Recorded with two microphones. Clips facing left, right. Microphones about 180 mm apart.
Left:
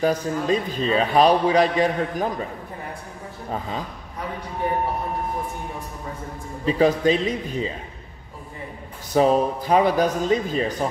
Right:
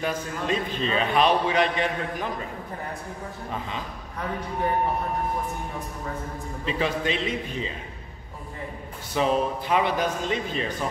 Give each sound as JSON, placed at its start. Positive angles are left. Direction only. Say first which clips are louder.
{"t": 0.0, "sound": "a man's voice", "louder": "left 7 dB", "side_deg": 35}
{"t": 6.6, "sound": "a man's voice", "louder": "left 8 dB", "side_deg": 40}
{"t": 9.1, "sound": "a man's voice", "louder": "left 5 dB", "side_deg": 40}